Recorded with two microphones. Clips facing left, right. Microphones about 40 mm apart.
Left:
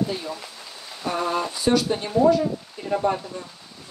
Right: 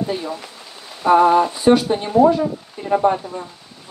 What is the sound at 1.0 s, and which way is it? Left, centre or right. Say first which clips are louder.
Speech: right 12 dB; right.